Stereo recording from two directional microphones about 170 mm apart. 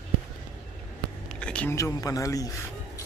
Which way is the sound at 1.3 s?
5° left (ahead or behind).